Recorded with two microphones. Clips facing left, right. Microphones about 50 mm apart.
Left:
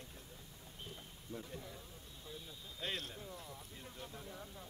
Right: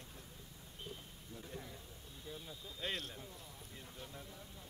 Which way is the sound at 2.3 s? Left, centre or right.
Centre.